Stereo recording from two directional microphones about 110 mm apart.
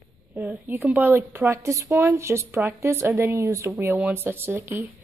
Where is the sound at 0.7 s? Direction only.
15° right (ahead or behind).